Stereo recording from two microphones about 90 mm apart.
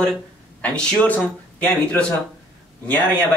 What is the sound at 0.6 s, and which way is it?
A man's voice, 15° left (ahead or behind).